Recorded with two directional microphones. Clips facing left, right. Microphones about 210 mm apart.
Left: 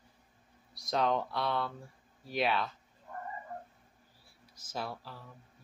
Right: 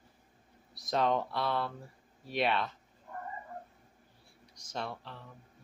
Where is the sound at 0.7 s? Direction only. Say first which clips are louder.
Right 1 dB; centre (ahead or behind).